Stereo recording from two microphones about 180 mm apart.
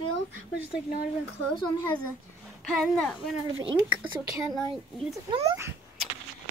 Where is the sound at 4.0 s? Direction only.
10° right (ahead or behind).